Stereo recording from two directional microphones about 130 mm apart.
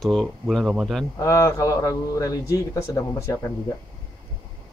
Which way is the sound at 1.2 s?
25° left (ahead or behind).